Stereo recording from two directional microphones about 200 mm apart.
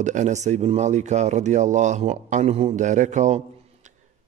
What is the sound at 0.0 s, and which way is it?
Speech, 35° right (ahead or behind).